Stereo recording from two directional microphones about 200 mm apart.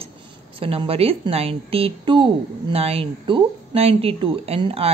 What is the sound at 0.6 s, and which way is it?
A woman's voice, 25° right (ahead or behind).